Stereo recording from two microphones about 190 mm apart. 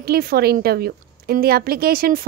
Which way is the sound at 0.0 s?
50° right (ahead or behind).